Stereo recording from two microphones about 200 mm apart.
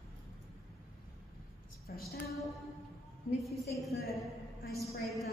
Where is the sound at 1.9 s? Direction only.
45° left (ahead or behind).